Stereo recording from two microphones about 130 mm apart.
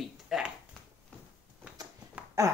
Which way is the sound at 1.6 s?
10° right (ahead or behind).